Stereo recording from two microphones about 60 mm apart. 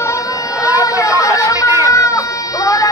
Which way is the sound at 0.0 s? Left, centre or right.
Left.